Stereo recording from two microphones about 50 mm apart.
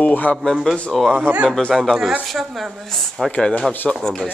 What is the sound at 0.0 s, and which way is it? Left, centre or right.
Speech, left.